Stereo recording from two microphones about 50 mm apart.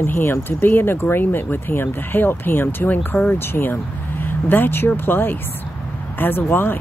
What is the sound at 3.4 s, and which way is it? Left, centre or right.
Speech, left.